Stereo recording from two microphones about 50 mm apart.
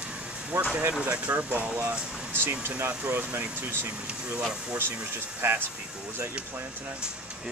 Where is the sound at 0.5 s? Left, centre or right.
Right.